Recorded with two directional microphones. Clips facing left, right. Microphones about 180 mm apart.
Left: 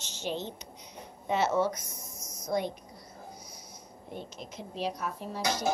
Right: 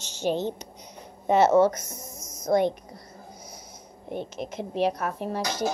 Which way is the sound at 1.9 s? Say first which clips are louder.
Right 5 dB; 90° right.